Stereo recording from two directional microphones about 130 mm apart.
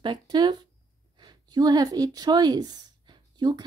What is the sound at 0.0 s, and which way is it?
A woman's voice, 35° right (ahead or behind).